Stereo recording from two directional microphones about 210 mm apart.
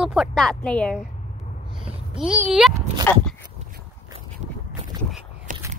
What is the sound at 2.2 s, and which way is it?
Speech, 5° right (ahead or behind).